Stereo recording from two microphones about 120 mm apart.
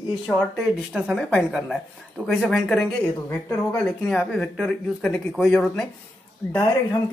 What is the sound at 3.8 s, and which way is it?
Speech, 5° left (ahead or behind).